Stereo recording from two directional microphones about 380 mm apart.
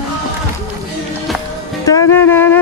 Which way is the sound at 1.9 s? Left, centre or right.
Centre.